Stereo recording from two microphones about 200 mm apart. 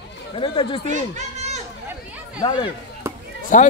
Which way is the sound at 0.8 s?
35° right (ahead or behind).